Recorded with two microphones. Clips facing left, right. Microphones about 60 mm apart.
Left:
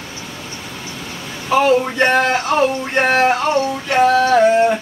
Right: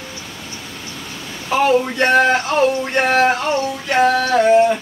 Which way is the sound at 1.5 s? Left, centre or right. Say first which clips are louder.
Left 1 dB; centre.